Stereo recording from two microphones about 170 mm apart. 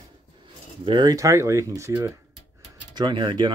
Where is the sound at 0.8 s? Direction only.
25° right (ahead or behind).